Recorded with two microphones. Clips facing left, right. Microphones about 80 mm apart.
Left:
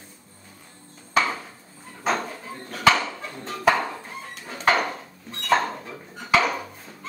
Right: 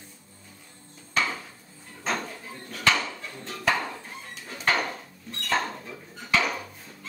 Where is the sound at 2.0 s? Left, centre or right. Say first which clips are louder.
Left 5 dB; left.